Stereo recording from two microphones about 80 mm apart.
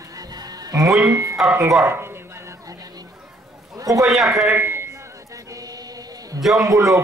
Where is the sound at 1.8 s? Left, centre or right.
Right.